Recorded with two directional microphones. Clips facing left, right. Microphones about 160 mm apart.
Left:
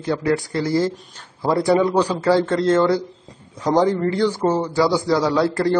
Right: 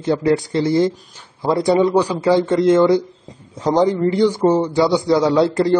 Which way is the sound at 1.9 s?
10° right (ahead or behind).